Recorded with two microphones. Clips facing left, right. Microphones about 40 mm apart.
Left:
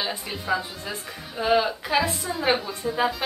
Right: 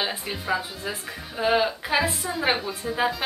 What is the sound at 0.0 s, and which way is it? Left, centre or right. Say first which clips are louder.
Speech: right 1 dB; centre.